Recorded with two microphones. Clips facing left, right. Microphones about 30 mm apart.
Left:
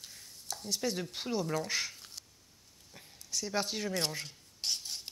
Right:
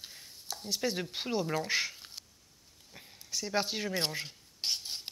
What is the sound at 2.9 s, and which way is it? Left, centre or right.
Rub, centre.